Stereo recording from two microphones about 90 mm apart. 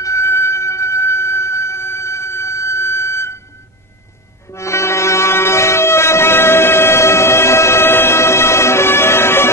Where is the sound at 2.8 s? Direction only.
30° left (ahead or behind).